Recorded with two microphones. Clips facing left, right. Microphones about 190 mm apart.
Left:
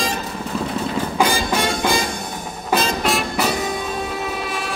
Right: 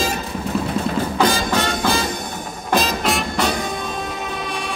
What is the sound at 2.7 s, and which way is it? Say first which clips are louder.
Music: even; centre (ahead or behind).